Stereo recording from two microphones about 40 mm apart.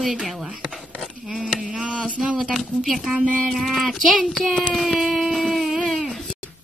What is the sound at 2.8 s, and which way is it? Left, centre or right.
Speech, centre.